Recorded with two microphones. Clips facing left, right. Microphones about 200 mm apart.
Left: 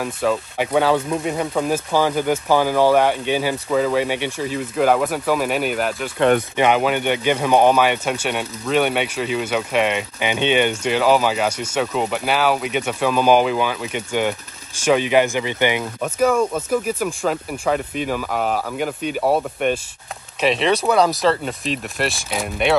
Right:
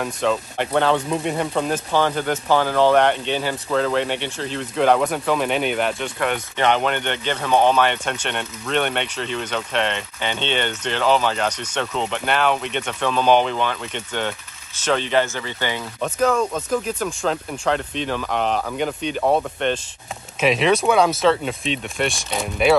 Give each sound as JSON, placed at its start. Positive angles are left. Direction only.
{"t": 0.0, "sound": "speech", "side_deg": 5}